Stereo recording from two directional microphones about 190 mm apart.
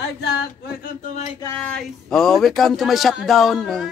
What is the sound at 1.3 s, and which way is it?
Speech, 15° left (ahead or behind).